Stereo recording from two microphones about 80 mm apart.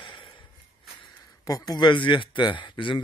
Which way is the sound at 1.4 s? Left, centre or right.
Left.